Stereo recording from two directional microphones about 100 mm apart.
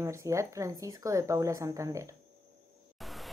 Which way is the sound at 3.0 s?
Centre (ahead or behind).